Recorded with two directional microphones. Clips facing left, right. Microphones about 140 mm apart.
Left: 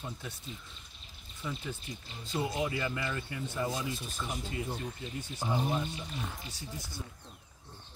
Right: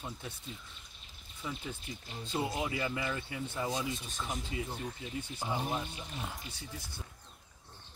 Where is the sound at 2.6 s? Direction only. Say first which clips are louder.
Left 1 dB; 15° right (ahead or behind).